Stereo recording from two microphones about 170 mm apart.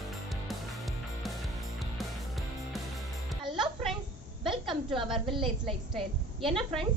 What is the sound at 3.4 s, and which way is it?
Music, 30° right (ahead or behind).